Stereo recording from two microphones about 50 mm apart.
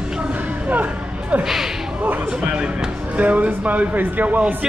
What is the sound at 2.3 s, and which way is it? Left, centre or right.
Speech, centre.